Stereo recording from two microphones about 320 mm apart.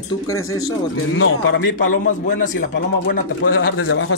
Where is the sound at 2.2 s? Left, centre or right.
Left.